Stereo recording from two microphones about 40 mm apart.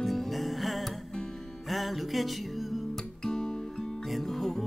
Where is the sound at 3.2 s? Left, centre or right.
Centre.